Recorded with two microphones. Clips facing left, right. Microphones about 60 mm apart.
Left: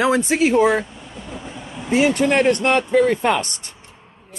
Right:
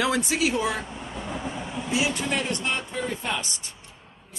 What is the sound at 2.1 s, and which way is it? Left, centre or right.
Speech, left.